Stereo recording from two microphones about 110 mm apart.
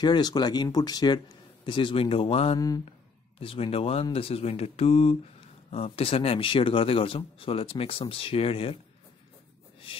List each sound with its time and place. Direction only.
0.0 s speech: 40° left (ahead or behind)
1.7 s a man's voice: 50° left (ahead or behind)